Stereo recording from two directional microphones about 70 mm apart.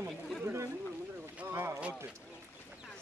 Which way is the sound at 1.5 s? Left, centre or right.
Right.